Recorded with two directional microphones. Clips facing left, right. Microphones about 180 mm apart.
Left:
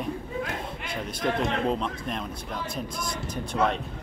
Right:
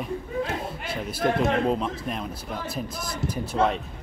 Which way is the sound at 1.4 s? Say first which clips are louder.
Right 3 dB; 5° right (ahead or behind).